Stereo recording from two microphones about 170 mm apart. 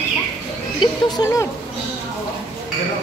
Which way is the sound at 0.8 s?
25° left (ahead or behind).